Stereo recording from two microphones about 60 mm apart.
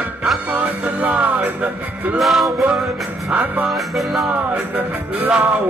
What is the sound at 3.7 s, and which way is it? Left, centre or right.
Music, centre.